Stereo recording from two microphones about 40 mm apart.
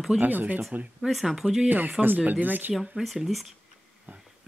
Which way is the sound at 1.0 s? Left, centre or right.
Centre.